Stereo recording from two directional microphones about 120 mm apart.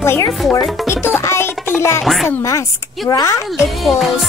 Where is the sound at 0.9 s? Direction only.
20° left (ahead or behind).